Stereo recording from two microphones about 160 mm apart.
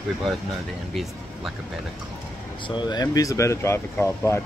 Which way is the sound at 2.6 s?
30° left (ahead or behind).